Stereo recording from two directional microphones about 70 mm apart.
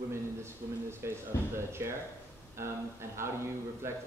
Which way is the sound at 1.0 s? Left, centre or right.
Right.